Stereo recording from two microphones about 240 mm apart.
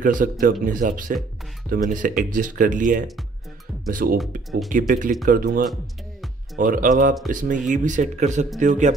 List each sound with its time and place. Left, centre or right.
0.0 s speech: right